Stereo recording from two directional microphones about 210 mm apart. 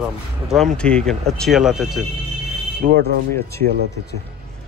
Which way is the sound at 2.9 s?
50° right (ahead or behind).